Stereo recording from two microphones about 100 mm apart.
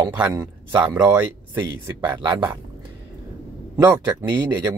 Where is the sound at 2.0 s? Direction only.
50° right (ahead or behind).